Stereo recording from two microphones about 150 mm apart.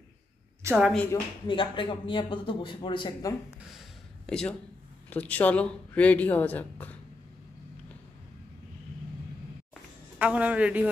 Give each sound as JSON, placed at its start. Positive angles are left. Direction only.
{"t": 0.9, "sound": "speech", "side_deg": 15}
{"t": 1.5, "sound": "a man's voice", "side_deg": 35}
{"t": 4.3, "sound": "a man's voice", "side_deg": 5}
{"t": 10.1, "sound": "a woman's voice", "side_deg": -10}